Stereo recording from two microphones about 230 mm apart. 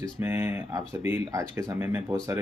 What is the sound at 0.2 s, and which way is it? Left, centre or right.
Speech, centre.